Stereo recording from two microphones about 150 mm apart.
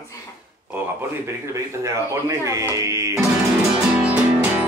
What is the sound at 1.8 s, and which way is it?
Speech, 20° right (ahead or behind).